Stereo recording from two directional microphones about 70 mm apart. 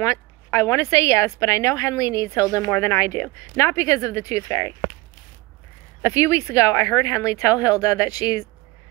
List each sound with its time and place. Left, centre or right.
0.0 s speech: left
2.7 s speech: left
6.0 s speech: left